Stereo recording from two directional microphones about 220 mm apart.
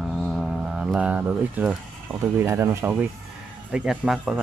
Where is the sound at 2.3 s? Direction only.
10° right (ahead or behind).